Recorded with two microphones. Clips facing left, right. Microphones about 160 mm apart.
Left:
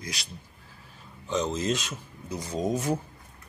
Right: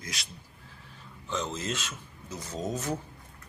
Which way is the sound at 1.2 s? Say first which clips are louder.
Left 6 dB; 20° left (ahead or behind).